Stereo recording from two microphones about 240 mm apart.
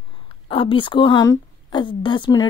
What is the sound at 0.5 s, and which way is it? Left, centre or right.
A woman's voice, left.